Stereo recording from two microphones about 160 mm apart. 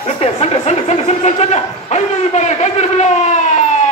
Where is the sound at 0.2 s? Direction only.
40° left (ahead or behind).